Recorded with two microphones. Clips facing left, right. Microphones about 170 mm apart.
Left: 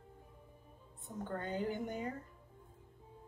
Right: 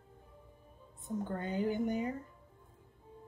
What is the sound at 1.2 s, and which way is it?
Speech, 15° right (ahead or behind).